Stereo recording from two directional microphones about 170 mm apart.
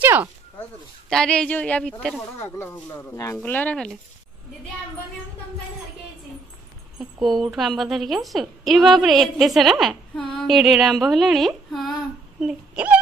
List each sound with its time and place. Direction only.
0.0 s a sound: 10° right (ahead or behind)
1.1 s a woman's voice: 5° left (ahead or behind)
2.4 s speech: 15° left (ahead or behind)
7.2 s a woman's voice: centre (ahead or behind)